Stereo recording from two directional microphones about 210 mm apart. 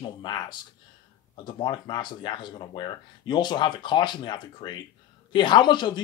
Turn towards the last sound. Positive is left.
turn(degrees=20)  # may be behind; listen again after turning